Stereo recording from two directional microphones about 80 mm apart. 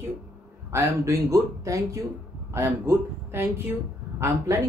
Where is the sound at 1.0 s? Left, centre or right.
Right.